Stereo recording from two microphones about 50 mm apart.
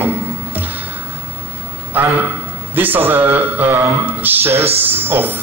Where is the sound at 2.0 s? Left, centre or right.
Right.